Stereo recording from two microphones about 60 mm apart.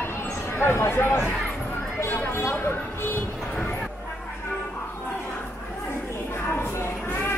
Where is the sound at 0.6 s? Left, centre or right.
Left.